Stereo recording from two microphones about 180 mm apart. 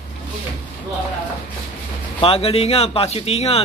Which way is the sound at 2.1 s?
30° left (ahead or behind).